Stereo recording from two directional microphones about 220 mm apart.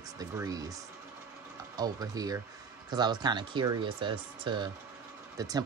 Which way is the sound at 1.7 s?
15° right (ahead or behind).